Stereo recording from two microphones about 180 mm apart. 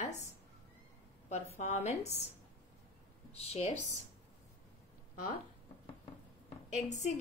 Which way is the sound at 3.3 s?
35° left (ahead or behind).